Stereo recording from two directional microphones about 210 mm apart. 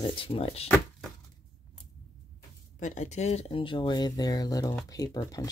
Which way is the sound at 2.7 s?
35° left (ahead or behind).